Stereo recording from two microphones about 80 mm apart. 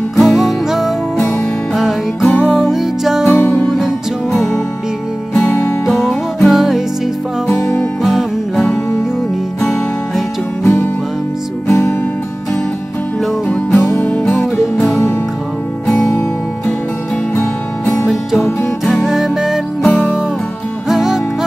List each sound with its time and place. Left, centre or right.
0.2 s music: centre
1.1 s music: centre
2.5 s music: centre
3.3 s music: left
3.6 s music: centre
5.9 s music: centre
7.4 s music: left
8.0 s music: centre
10.6 s music: left
13.5 s music: centre
15.9 s music: centre
18.0 s music: centre
19.9 s music: left
20.9 s music: centre